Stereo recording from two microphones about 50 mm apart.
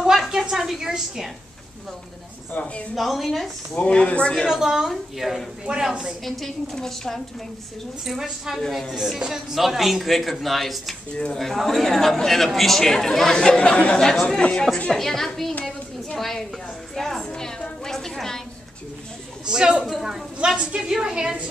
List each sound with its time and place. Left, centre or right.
0.0 s a sound: centre
0.8 s a woman's voice: centre
2.6 s speech: left
2.9 s a man's voice: centre
3.7 s speech: left
4.5 s a woman's voice: centre
6.2 s speech: centre
8.0 s a man's voice: centre
8.6 s speech: centre
9.3 s a man's voice: centre; by 14.7 s left
14.9 s a man's voice: centre
19.4 s a woman's voice: centre
20.4 s a woman's voice: centre